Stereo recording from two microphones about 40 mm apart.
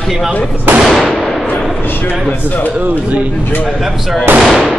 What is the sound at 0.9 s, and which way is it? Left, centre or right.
Fireworks, centre.